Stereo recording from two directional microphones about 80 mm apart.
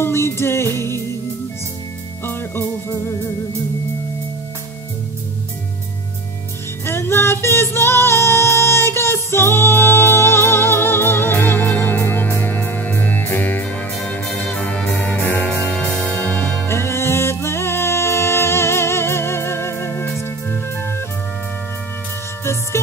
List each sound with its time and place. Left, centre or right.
0.0 s music: left
2.2 s music: left
6.9 s music: left
22.4 s music: left